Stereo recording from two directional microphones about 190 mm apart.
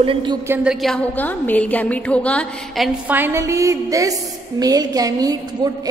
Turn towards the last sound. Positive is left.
turn(degrees=-20)  # may be behind; listen again after turning